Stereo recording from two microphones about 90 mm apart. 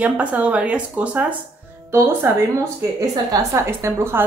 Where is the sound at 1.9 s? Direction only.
30° right (ahead or behind).